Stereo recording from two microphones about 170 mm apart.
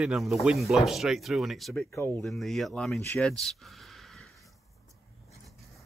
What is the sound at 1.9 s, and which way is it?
Speech, 15° left (ahead or behind).